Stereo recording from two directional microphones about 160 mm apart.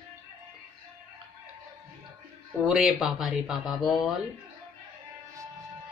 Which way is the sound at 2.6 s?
5° right (ahead or behind).